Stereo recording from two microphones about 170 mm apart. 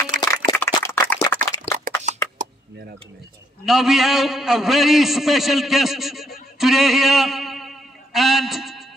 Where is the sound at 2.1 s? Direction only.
45° right (ahead or behind).